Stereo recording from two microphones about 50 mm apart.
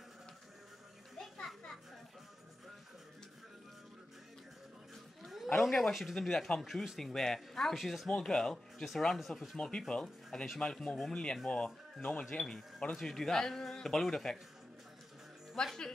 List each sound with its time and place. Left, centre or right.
1.1 s children playing: centre
5.2 s a sound: centre
5.8 s a man's voice: centre
7.7 s speech: centre
8.1 s a man's voice: centre
9.6 s a man's voice: centre
10.0 s speech: centre
10.6 s a man's voice: centre
12.3 s a man's voice: centre
15.5 s a man's voice: centre